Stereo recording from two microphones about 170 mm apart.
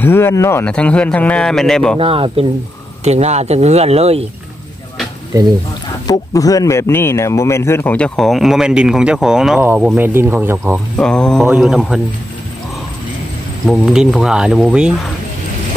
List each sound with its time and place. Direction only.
0.0 s speech: 15° left (ahead or behind)
2.0 s speech: 35° right (ahead or behind)
6.0 s speech: 20° left (ahead or behind); by 10.8 s 15° right (ahead or behind)
11.0 s speech: 5° left (ahead or behind)
13.7 s speech: centre (ahead or behind)